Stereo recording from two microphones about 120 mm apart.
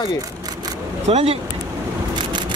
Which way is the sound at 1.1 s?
65° right (ahead or behind).